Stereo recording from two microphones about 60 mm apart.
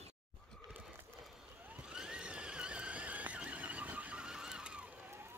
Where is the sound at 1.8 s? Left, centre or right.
Centre.